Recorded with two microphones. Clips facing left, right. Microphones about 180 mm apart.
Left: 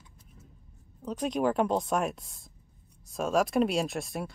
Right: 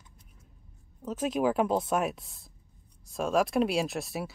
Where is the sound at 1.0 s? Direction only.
5° right (ahead or behind).